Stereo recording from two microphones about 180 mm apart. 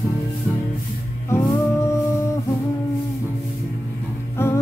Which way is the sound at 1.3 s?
15° left (ahead or behind).